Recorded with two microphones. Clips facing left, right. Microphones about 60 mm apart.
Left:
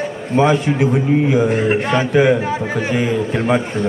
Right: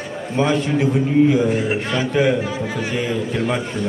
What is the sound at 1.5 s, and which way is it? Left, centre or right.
Speech, left.